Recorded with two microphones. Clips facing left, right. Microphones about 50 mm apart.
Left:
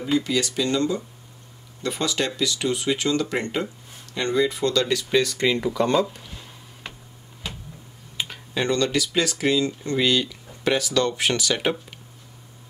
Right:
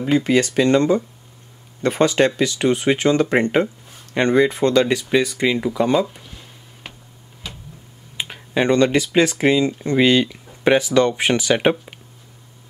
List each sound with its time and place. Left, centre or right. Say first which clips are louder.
0.0 s speech: right 6 dB; right; by 6.2 s centre
8.2 s speech: right 6 dB; right